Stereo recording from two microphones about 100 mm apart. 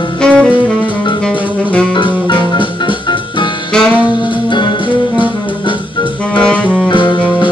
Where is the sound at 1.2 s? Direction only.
10° left (ahead or behind).